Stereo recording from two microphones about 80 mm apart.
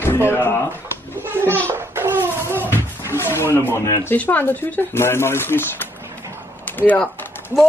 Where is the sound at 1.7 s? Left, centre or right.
Right.